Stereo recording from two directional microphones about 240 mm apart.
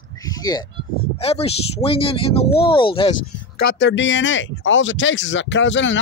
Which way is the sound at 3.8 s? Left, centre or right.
Left.